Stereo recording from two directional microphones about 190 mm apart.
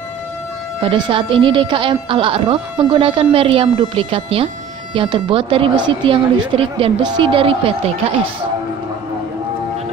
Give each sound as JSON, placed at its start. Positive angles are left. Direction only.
{"t": 0.8, "sound": "speech", "side_deg": -25}